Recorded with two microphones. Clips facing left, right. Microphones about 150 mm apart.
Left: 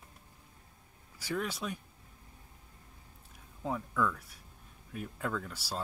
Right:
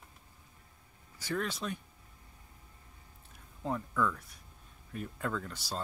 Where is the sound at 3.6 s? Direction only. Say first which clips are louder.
Even; 5° left (ahead or behind).